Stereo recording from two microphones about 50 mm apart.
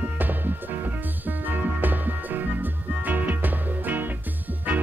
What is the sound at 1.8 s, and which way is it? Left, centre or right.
Music, right.